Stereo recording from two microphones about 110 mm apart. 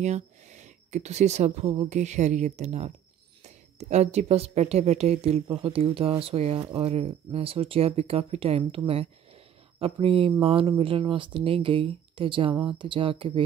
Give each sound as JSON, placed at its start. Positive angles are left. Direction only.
{"t": 0.0, "sound": "speech", "side_deg": -90}
{"t": 5.5, "sound": "speech", "side_deg": -55}